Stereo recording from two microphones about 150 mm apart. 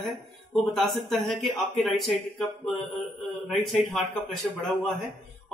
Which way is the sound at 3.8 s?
Centre (ahead or behind).